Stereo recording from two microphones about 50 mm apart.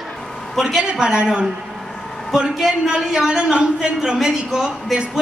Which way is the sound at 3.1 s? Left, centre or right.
Centre.